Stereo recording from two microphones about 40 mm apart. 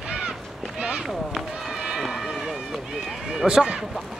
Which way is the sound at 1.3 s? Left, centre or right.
Centre.